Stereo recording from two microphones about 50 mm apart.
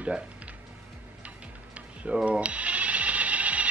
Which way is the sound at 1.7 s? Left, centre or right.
Right.